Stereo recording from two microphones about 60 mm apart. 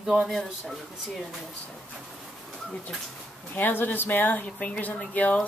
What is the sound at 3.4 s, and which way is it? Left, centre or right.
Speech, left.